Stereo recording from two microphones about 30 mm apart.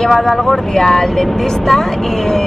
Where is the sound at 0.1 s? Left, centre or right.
Centre.